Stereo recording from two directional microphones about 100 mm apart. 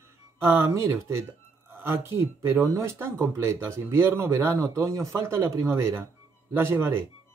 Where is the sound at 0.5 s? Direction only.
25° right (ahead or behind).